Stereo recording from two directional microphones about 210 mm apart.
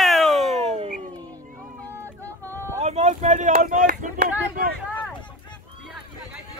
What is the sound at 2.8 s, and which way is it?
Speech, 30° right (ahead or behind).